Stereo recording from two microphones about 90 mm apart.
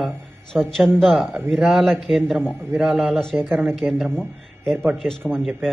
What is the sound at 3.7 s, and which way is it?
A man's voice, 5° left (ahead or behind).